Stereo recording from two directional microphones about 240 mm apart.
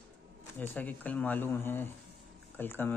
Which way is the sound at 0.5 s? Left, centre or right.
Centre.